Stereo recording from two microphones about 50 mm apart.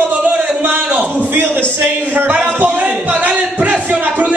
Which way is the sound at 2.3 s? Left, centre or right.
Right.